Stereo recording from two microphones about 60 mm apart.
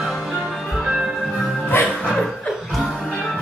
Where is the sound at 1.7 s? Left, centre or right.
Left.